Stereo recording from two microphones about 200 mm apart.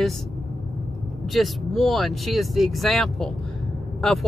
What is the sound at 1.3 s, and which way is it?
Speech, centre (ahead or behind).